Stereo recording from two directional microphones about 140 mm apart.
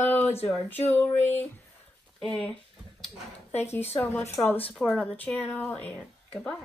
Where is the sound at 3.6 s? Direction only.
15° left (ahead or behind).